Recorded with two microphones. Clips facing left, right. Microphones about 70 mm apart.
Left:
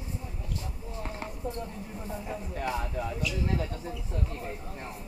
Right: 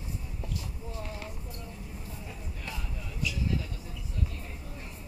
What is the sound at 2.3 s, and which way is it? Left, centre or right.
Speech, left.